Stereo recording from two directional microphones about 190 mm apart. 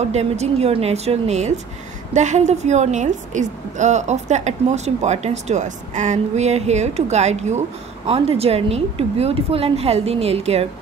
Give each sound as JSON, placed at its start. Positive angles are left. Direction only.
{"t": 0.0, "sound": "a woman's voice", "side_deg": -35}